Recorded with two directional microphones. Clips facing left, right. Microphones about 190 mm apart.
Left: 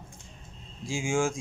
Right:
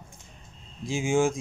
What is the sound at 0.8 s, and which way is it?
Speech, 20° right (ahead or behind).